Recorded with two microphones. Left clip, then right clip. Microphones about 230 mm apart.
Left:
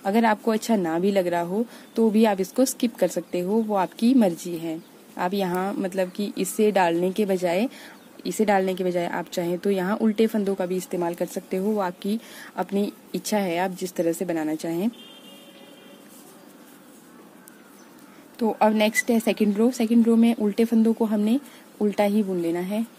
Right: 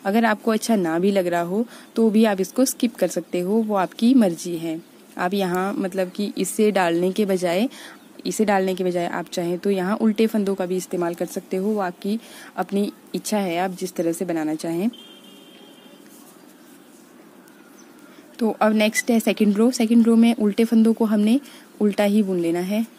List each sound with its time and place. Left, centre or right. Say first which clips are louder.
0.0 s a woman's voice: right 1 dB; centre
18.4 s a woman's voice: right 1 dB; centre